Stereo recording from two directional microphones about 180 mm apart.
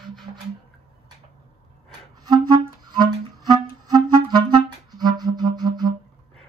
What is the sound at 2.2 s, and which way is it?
Music, 25° right (ahead or behind).